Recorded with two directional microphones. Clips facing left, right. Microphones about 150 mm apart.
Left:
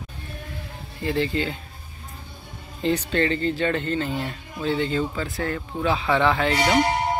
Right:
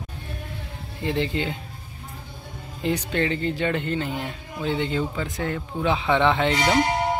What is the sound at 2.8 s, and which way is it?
Speech, 10° right (ahead or behind).